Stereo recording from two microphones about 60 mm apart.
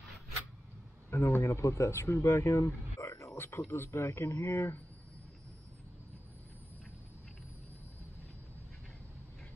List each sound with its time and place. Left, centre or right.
1.1 s speech: left
1.4 s speech: left
2.2 s speech: left